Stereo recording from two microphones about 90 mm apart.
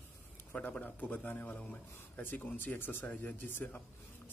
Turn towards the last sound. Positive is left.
turn(degrees=20)  # may be behind; listen again after turning